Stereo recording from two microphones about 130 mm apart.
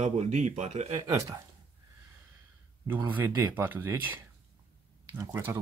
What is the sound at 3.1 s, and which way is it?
Speech, 15° right (ahead or behind).